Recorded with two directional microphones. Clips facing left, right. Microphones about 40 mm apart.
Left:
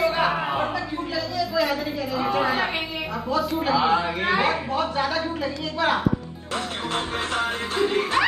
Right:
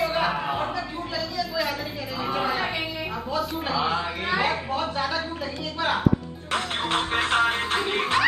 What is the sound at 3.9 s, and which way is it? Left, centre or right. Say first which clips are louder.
A woman's voice: left 4 dB; left.